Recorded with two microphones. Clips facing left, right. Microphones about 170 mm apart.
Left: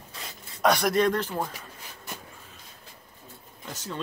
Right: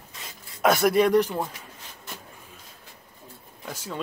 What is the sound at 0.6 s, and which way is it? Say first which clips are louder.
Speech: right 3 dB; 5° right (ahead or behind).